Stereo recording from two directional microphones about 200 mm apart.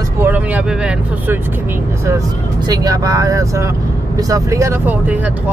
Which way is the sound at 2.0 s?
15° right (ahead or behind).